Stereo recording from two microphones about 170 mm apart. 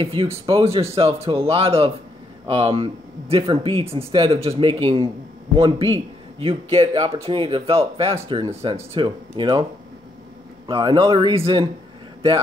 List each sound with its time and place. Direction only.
0.0 s speech: 30° right (ahead or behind)
6.4 s speech: 35° right (ahead or behind)
10.7 s speech: 30° right (ahead or behind)